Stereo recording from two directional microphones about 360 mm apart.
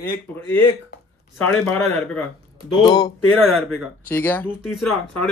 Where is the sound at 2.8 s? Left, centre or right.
Centre.